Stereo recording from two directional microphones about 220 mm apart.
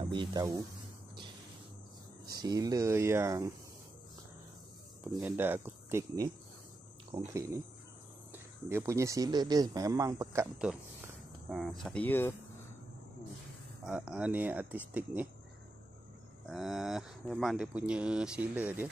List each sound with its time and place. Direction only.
0.1 s speech: 20° right (ahead or behind)
2.3 s speech: 20° right (ahead or behind)
5.2 s speech: 10° right (ahead or behind)
7.3 s speech: 15° right (ahead or behind); by 12.4 s 10° left (ahead or behind)
13.8 s speech: 5° right (ahead or behind)
16.4 s speech: centre (ahead or behind)